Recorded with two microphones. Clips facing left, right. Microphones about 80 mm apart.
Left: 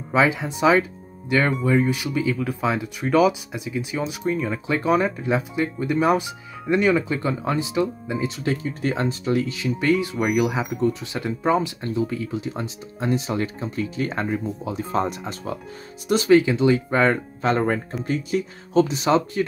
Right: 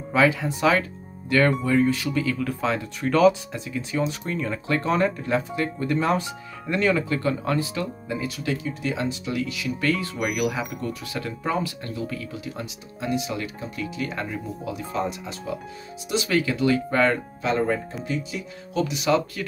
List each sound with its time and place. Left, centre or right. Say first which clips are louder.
0.1 s speech: left 1 dB; left
8.8 s speech: left 5 dB; left
15.0 s speech: left 4 dB; left
16.3 s speech: left 6 dB; left
17.4 s speech: left 1 dB; left